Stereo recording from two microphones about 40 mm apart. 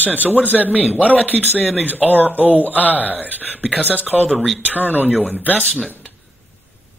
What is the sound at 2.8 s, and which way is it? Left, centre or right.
Speech, left.